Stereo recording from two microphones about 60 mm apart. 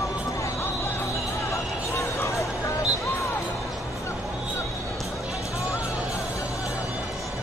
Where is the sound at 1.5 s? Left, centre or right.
Left.